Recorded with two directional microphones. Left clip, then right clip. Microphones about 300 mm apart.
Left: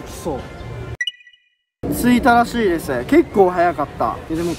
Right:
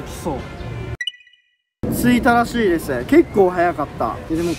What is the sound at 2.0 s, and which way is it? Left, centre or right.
Speech, centre.